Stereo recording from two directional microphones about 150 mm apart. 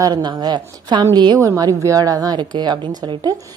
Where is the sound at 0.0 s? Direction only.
30° right (ahead or behind).